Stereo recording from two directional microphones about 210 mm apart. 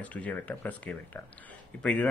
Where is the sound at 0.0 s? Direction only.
5° left (ahead or behind).